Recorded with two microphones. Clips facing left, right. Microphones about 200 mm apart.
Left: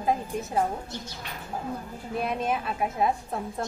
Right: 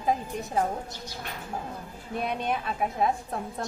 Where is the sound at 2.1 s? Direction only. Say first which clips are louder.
Left 1 dB; centre (ahead or behind).